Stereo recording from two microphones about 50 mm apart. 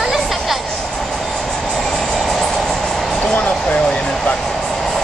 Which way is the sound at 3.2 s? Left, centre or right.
Left.